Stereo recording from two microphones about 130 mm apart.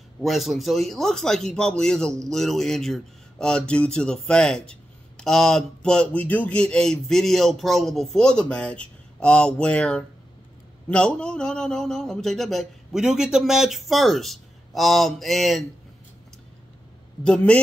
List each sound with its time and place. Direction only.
0.2 s speech: centre (ahead or behind)
17.2 s a man's voice: 5° left (ahead or behind)